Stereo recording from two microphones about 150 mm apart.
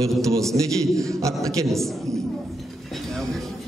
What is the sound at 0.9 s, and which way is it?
Speech, 20° right (ahead or behind).